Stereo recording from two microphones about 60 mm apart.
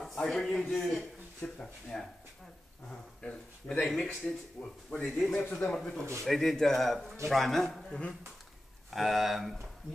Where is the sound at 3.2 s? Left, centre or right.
Centre.